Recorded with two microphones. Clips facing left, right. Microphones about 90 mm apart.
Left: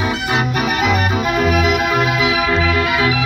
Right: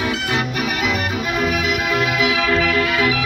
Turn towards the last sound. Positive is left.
turn(degrees=20)  # may be behind; listen again after turning